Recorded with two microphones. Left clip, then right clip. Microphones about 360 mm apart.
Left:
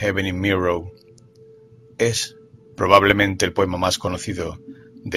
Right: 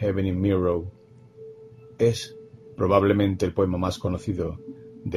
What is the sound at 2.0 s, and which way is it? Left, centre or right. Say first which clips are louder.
Speech: left 2 dB; left.